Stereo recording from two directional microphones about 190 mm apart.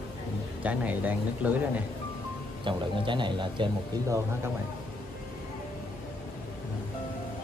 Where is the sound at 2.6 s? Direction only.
25° right (ahead or behind).